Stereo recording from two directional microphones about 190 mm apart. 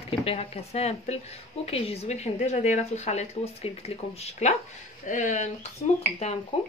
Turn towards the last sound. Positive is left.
turn(degrees=30)  # may be behind; listen again after turning